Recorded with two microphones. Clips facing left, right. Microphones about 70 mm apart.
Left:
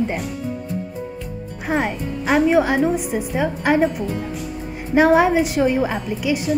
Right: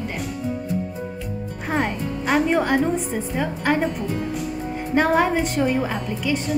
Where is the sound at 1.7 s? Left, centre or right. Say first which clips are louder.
Left 2 dB; centre.